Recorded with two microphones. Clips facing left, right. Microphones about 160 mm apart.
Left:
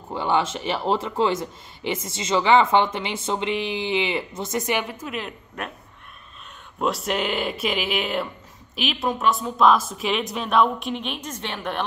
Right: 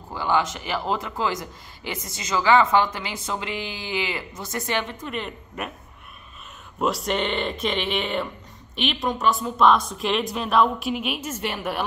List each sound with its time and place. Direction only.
0.1 s a man's voice: 25° left (ahead or behind); by 5.7 s centre (ahead or behind)
6.8 s a woman's voice: centre (ahead or behind)